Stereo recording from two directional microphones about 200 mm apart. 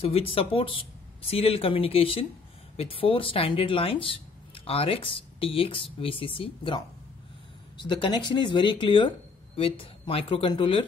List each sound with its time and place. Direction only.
0.0 s speech: 30° left (ahead or behind)